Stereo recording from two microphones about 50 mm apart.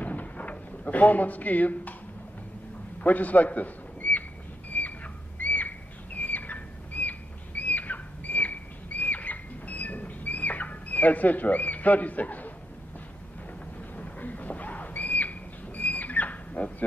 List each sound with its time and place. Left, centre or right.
0.0 s drawer open or close: left
3.0 s a sound: left
13.9 s squawk: left